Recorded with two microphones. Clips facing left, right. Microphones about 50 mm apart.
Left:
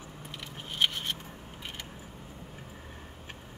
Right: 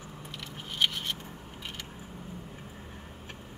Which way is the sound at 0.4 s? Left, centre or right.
Left.